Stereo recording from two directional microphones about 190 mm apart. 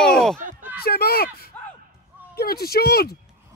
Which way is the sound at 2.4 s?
55° left (ahead or behind).